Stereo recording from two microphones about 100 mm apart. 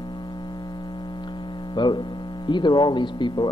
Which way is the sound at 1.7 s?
50° left (ahead or behind).